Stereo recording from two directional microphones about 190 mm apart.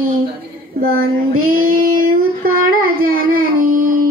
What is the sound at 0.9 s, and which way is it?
Child singing, 90° right.